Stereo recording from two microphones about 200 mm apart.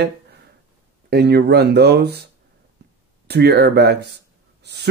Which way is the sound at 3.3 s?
55° right (ahead or behind).